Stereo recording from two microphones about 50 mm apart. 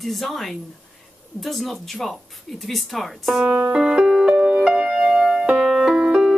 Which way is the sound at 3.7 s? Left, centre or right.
Centre.